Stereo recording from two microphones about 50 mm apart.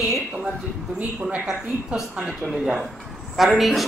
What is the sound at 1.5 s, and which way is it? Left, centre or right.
Speech, centre.